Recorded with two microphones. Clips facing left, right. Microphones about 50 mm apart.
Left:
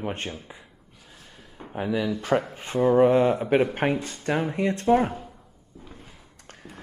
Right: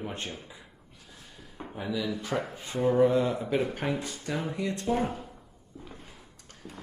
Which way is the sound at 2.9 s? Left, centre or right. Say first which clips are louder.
Left 5 dB; left.